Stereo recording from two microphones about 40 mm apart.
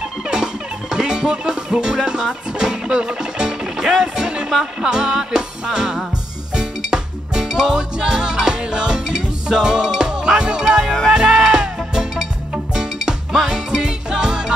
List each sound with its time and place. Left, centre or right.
0.3 s music: centre
4.0 s speech: centre
4.6 s music: centre
13.5 s music: centre